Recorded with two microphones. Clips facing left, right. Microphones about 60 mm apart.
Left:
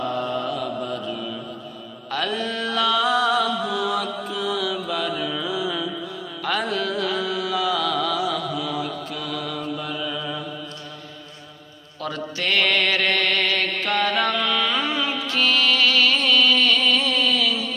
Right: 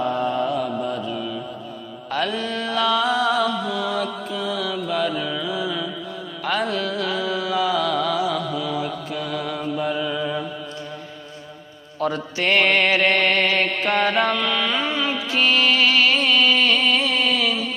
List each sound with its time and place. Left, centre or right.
0.0 s mantra: centre
6.4 s music: centre; by 10.4 s right
12.0 s mantra: right
14.3 s carnatic music: centre
14.9 s music: centre